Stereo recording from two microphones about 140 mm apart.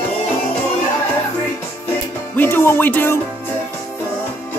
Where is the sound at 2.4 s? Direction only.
15° left (ahead or behind).